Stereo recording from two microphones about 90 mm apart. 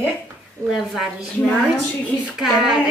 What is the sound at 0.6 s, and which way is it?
A woman's voice, 5° right (ahead or behind).